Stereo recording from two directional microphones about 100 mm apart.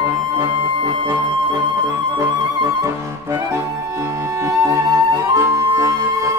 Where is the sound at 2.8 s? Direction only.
30° right (ahead or behind).